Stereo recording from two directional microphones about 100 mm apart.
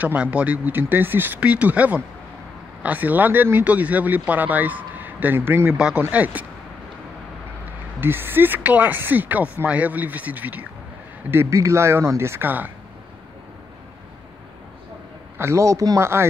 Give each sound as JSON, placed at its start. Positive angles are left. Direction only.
{"t": 0.0, "sound": "speech", "side_deg": -15}
{"t": 5.7, "sound": "speech", "side_deg": -10}
{"t": 8.0, "sound": "speech", "side_deg": -20}
{"t": 15.3, "sound": "speech", "side_deg": -25}